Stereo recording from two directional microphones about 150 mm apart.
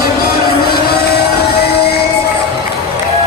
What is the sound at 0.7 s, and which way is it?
Music, 90° left.